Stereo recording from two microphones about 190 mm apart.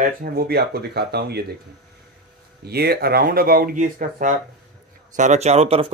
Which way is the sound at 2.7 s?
55° right (ahead or behind).